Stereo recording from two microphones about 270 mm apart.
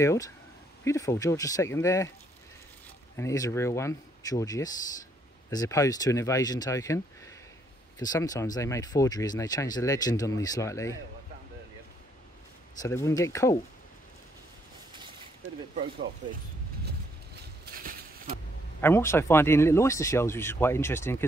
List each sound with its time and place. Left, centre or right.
0.0 s speech: centre
3.2 s speech: centre
12.8 s speech: centre
17.6 s a sound: right
18.8 s speech: centre